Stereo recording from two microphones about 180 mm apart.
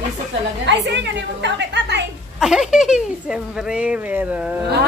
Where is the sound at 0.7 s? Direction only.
75° right (ahead or behind).